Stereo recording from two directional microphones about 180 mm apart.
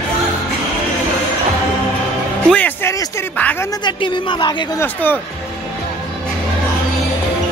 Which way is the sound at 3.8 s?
25° left (ahead or behind).